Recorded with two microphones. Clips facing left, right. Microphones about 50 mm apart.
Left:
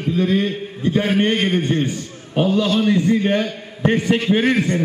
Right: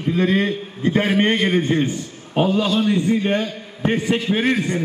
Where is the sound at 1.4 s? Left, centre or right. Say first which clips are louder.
Right 1 dB; right.